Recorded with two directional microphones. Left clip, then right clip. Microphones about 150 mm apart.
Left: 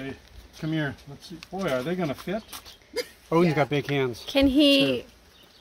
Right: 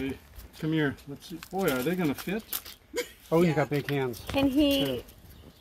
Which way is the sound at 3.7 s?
50° left (ahead or behind).